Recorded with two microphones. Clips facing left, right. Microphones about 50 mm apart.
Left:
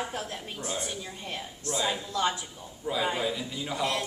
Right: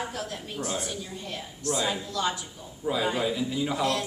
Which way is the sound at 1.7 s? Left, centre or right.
Centre.